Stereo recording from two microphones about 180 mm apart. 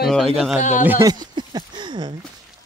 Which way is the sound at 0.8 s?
15° right (ahead or behind).